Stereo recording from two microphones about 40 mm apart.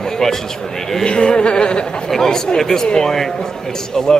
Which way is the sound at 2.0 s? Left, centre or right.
Centre.